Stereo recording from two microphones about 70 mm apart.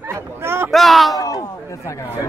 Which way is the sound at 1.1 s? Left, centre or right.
Left.